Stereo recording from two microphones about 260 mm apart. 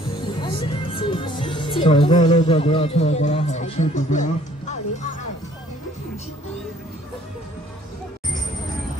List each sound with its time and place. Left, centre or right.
0.4 s music: left